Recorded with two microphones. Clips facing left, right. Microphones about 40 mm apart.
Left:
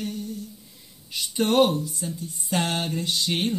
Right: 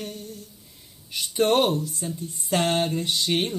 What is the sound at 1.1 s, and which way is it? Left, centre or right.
Speech, right.